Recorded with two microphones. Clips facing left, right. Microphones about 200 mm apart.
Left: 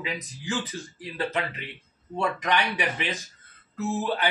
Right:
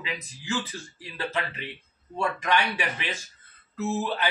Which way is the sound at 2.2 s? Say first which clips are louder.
Even; 15° left (ahead or behind).